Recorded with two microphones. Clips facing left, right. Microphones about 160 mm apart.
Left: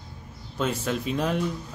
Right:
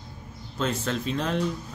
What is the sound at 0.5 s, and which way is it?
Speech, 10° left (ahead or behind).